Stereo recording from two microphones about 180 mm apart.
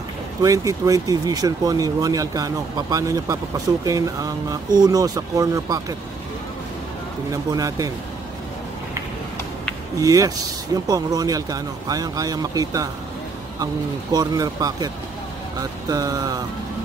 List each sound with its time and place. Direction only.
0.4 s speech: 20° right (ahead or behind)
7.5 s speech: 20° right (ahead or behind)
9.9 s speech: 20° right (ahead or behind)
14.1 s speech: 20° right (ahead or behind)